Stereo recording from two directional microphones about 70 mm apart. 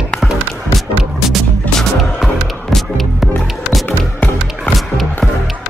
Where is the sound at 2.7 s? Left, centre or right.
Centre.